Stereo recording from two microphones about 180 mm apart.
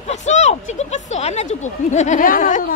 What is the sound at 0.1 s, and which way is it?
Speech, 40° left (ahead or behind).